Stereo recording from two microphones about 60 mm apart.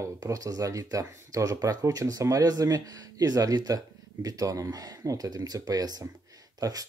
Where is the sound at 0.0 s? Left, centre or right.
Right.